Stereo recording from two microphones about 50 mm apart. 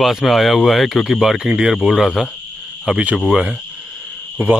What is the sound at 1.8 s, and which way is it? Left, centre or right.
Speech, centre.